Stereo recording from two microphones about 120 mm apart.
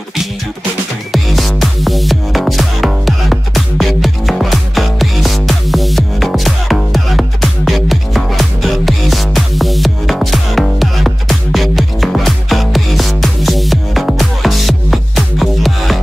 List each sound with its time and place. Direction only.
1.1 s music: centre (ahead or behind)